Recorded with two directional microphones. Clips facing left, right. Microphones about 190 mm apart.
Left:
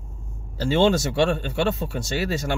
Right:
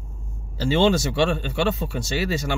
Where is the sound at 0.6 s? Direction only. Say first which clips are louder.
Even; 50° left (ahead or behind).